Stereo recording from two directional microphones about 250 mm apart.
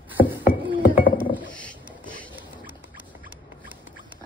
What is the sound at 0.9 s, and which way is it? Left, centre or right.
Chink, centre.